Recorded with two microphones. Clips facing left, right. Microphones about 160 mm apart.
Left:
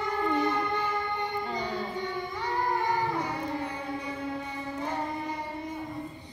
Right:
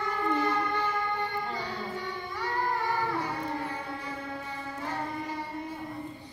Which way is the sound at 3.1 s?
20° left (ahead or behind).